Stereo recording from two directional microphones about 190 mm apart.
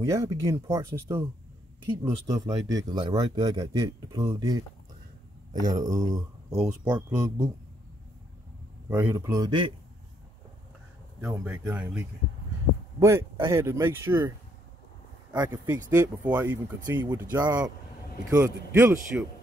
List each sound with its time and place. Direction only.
0.2 s speech: 15° right (ahead or behind)
5.7 s speech: 15° right (ahead or behind)
8.9 s speech: 15° right (ahead or behind)
11.1 s speech: 5° right (ahead or behind)
13.0 s speech: 15° right (ahead or behind)
15.3 s speech: 15° right (ahead or behind)